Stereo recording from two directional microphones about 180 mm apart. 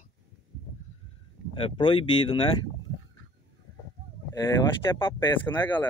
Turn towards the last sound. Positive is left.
turn(degrees=25)  # may be behind; listen again after turning